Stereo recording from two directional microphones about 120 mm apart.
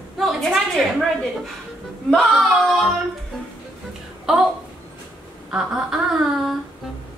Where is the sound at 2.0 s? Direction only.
Centre (ahead or behind).